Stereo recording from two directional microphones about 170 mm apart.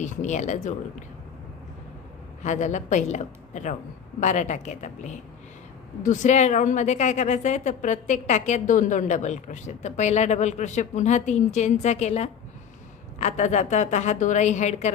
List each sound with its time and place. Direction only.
0.0 s a woman's voice: 45° left (ahead or behind)
2.4 s a woman's voice: 45° left (ahead or behind)